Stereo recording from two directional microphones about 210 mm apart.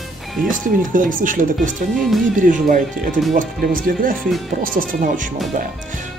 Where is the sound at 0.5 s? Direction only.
40° right (ahead or behind).